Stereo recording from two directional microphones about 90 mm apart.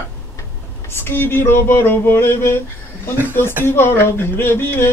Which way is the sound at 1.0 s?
25° left (ahead or behind).